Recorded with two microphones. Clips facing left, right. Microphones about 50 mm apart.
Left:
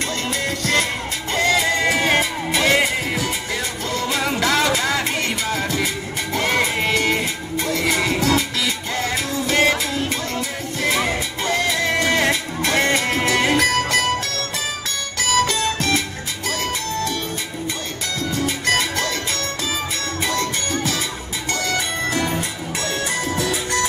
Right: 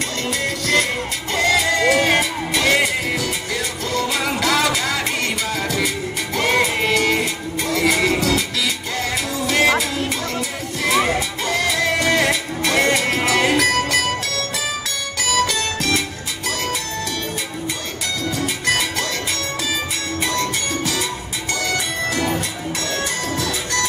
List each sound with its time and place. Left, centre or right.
0.3 s music: centre
18.3 s music: centre
20.2 s music: centre
23.3 s music: centre